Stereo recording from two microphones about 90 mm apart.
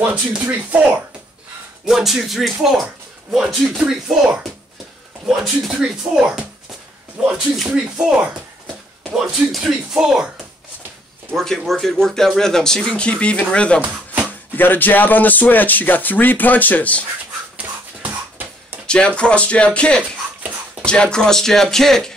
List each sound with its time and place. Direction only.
0.0 s speech: 15° right (ahead or behind)
1.9 s speech: centre (ahead or behind)
11.3 s speech: 5° left (ahead or behind)
13.7 s a sound: 15° right (ahead or behind)
14.6 s speech: 20° left (ahead or behind)
18.9 s speech: 10° left (ahead or behind)